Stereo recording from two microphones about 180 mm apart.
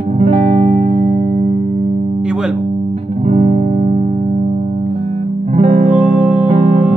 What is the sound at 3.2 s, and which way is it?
Music, 40° right (ahead or behind).